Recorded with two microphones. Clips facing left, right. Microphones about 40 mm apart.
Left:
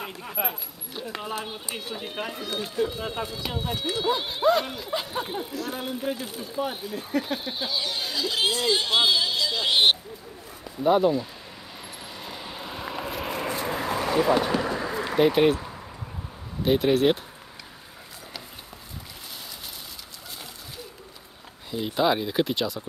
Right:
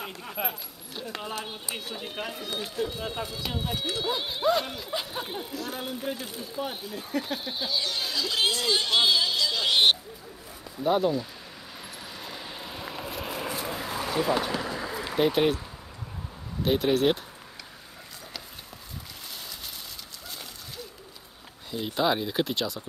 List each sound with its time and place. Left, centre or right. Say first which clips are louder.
0.0 s speech: left 2 dB; centre
12.2 s vehicle: left 3 dB; centre
13.7 s a sound: left 6 dB; left
15.1 s speech: left 4 dB; centre
16.6 s speech: left 3 dB; centre
21.6 s speech: left 3 dB; centre